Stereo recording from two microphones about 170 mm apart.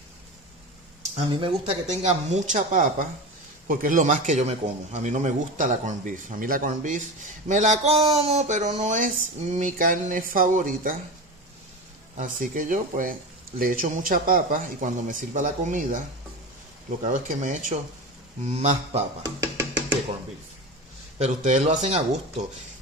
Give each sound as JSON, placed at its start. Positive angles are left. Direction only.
{"t": 1.1, "sound": "speech", "side_deg": -40}
{"t": 12.2, "sound": "speech", "side_deg": -50}
{"t": 17.0, "sound": "speech", "side_deg": -45}
{"t": 19.2, "sound": "music", "side_deg": -15}
{"t": 21.2, "sound": "speech", "side_deg": -45}